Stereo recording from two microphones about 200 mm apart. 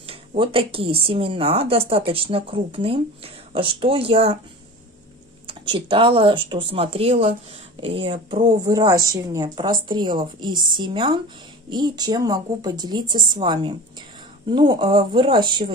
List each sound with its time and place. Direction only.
0.0 s speech: 30° right (ahead or behind)
5.5 s speech: 25° right (ahead or behind)